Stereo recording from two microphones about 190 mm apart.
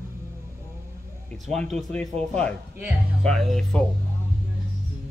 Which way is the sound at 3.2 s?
5° left (ahead or behind).